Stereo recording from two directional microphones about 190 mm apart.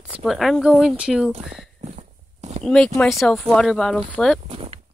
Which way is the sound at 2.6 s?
5° left (ahead or behind).